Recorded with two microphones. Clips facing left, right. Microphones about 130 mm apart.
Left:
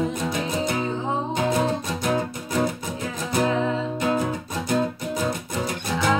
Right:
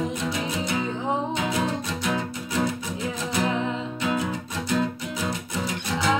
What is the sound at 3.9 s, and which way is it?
Music, 45° left (ahead or behind).